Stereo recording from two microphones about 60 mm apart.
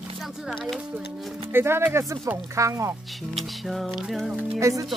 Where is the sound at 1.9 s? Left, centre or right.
Right.